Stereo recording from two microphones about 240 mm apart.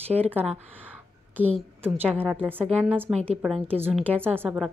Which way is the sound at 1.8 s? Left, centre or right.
Centre.